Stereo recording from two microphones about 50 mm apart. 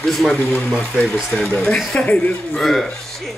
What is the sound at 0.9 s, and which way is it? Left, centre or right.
Speech, centre.